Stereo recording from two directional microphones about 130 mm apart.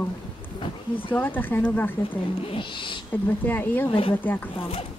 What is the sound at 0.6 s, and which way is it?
Speech, 40° left (ahead or behind).